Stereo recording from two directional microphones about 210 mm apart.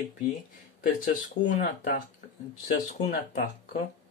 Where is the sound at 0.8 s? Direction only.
40° left (ahead or behind).